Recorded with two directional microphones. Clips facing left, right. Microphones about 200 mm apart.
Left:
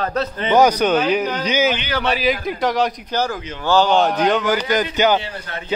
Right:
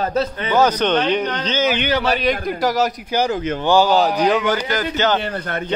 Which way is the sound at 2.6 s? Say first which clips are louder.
Even; centre (ahead or behind).